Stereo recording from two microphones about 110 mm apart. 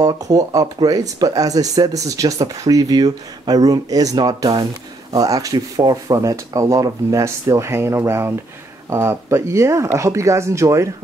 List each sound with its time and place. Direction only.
0.0 s speech: 35° right (ahead or behind)